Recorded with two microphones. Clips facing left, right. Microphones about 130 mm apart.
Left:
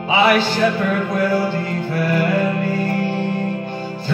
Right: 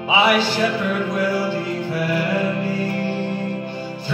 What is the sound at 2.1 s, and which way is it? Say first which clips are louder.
Music: left 4 dB; 50° left (ahead or behind).